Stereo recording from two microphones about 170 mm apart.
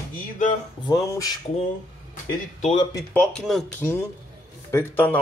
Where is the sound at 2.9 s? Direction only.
10° left (ahead or behind).